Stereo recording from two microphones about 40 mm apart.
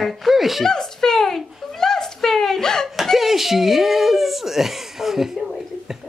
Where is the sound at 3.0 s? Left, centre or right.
Centre.